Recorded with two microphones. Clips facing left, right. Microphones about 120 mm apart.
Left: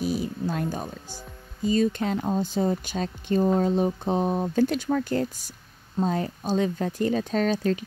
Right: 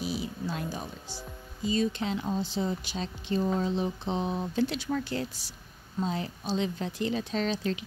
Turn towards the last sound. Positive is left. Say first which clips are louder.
# left 6 dB
turn(degrees=45)  # may be behind; listen again after turning